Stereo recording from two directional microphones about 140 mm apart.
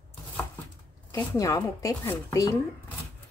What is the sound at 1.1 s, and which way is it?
Speech, 25° left (ahead or behind).